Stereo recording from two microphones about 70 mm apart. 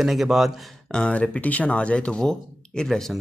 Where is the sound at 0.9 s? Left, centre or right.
Centre.